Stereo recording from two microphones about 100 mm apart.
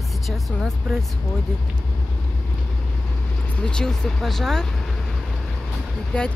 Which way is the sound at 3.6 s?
5° left (ahead or behind).